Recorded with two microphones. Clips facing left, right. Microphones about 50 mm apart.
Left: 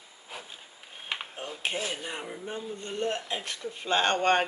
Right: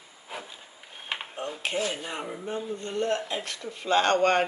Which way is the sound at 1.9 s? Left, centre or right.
Centre.